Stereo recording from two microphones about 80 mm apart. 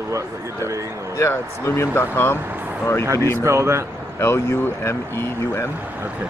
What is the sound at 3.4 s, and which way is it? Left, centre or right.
Speech, right.